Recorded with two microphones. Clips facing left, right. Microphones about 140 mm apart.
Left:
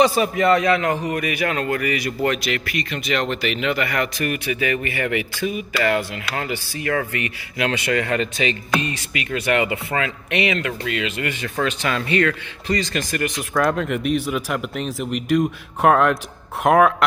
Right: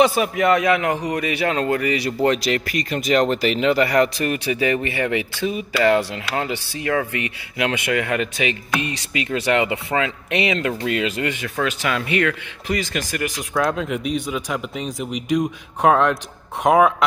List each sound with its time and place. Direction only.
0.0 s a man's voice: 5° right (ahead or behind)
1.2 s speech: 25° right (ahead or behind)
9.1 s speech: 25° right (ahead or behind)
10.9 s speech: 35° right (ahead or behind)
11.6 s speech: 10° right (ahead or behind)